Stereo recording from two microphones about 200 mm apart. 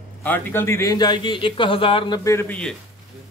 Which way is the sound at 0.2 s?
10° left (ahead or behind).